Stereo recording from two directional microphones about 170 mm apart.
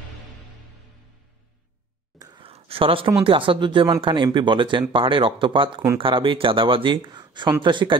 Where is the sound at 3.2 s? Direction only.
30° right (ahead or behind).